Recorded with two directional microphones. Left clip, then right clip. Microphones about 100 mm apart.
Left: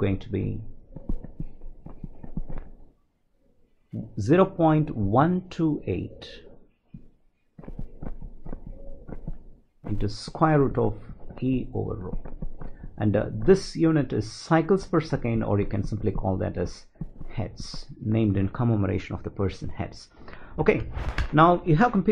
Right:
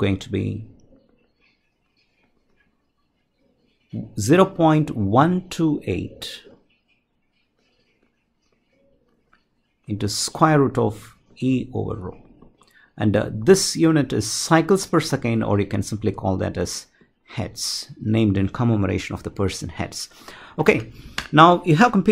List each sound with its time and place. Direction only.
0.0 s speech: 25° right (ahead or behind)
3.9 s speech: 20° right (ahead or behind)
9.9 s speech: 20° right (ahead or behind)